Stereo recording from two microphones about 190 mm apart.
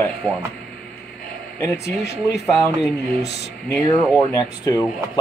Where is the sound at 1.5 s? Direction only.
15° left (ahead or behind).